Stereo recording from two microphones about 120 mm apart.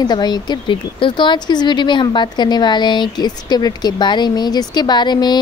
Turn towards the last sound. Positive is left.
turn(degrees=35)  # may be behind; listen again after turning